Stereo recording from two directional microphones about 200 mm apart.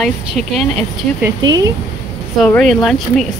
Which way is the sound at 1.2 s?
20° right (ahead or behind).